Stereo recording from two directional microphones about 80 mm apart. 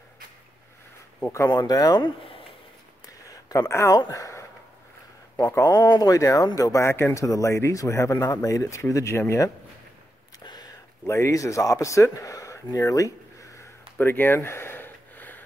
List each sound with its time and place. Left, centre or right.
1.5 s speech: left
2.0 s speech: left
3.3 s a sound: left
4.1 s speech: left
5.8 s speech: left
10.4 s a sound: left
11.1 s speech: left
13.9 s gasp: left